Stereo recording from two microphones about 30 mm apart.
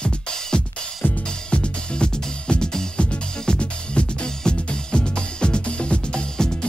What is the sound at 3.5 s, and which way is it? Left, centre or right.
Music, left.